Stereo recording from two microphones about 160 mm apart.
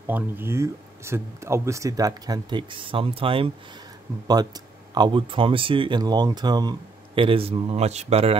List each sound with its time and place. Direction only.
0.0 s speech: 15° right (ahead or behind); by 8.4 s 40° right (ahead or behind)